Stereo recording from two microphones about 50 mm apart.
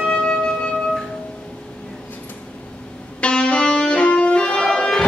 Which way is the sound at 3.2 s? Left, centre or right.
Left.